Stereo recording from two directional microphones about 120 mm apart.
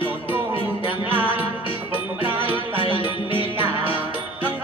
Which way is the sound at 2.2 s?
45° left (ahead or behind).